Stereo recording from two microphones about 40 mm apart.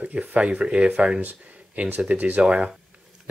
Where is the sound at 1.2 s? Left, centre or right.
Right.